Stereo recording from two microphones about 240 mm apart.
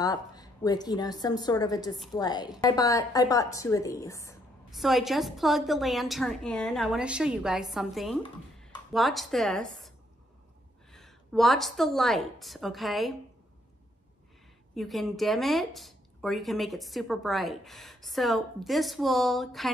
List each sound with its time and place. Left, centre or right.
0.0 s a woman's voice: centre
4.6 s a woman's voice: centre
14.8 s a woman's voice: centre